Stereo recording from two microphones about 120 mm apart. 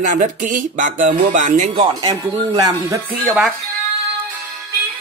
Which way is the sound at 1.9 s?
35° right (ahead or behind).